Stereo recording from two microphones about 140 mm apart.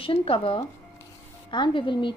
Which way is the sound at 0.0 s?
40° left (ahead or behind).